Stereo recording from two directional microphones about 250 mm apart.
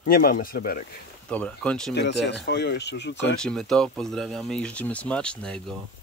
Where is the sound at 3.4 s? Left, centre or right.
Centre.